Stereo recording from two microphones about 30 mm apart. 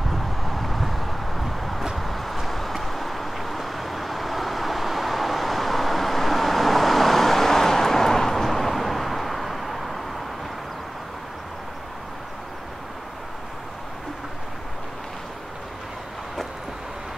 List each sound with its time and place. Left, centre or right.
0.1 s vehicle: centre